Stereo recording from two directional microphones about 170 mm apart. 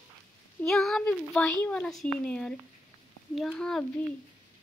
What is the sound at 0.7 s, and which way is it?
A child's voice, centre (ahead or behind).